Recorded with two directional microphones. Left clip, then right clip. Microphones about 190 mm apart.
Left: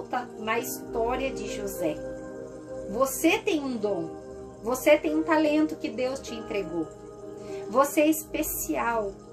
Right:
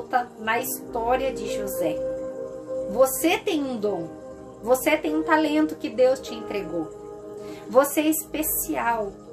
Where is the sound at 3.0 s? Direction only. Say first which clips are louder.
Right 3 dB; 25° right (ahead or behind).